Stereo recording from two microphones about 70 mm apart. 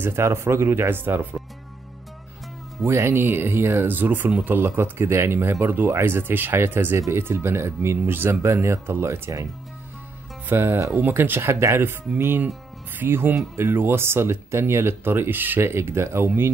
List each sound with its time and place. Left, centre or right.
0.0 s speech: right
2.8 s speech: right
4.6 s speech: right
10.5 s speech: right